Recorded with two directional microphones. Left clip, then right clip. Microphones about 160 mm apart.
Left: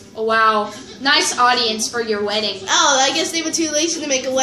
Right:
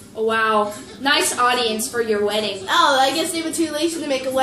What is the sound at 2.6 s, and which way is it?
A woman's voice, 55° left (ahead or behind).